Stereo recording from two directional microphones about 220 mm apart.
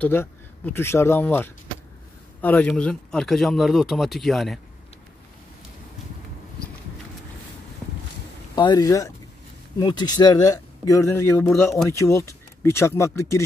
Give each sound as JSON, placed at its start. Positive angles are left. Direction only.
{"t": 0.0, "sound": "speech", "side_deg": 10}
{"t": 8.5, "sound": "speech", "side_deg": 20}